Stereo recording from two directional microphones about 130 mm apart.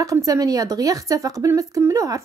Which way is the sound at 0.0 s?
25° right (ahead or behind).